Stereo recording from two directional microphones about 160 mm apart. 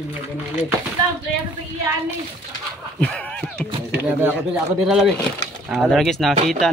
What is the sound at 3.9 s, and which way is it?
Speech, 10° right (ahead or behind).